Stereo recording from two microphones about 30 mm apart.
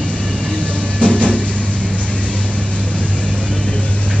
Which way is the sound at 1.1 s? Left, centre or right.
Right.